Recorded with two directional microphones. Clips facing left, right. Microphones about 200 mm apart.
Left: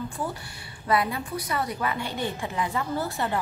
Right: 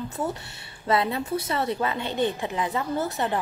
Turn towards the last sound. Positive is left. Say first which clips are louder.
# right 2 dB
turn(degrees=-20)  # may be behind; listen again after turning